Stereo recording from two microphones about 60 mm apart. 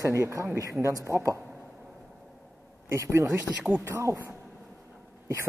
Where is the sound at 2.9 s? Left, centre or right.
Right.